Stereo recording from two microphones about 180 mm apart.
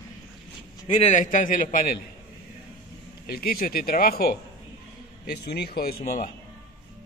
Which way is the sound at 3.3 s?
60° left (ahead or behind).